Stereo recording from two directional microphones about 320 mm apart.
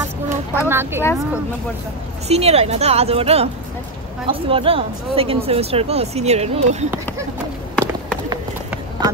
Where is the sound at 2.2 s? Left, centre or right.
Centre.